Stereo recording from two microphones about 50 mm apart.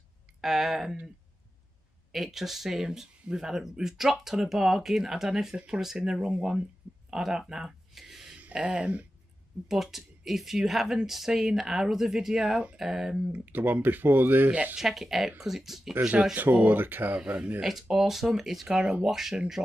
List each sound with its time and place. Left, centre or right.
0.4 s a woman's voice: centre
2.1 s a woman's voice: centre
8.6 s speech: right
9.7 s a woman's voice: centre
13.3 s speech: right
14.5 s speech: right
14.8 s speech: centre
16.3 s speech: right
17.1 s speech: right
17.6 s speech: centre